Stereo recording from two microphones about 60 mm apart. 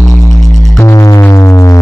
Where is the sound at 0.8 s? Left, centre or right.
Left.